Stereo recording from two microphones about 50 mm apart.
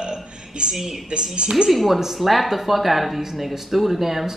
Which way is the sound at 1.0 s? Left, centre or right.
Centre.